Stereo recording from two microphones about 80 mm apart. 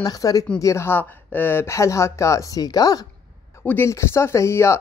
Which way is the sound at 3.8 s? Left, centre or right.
Left.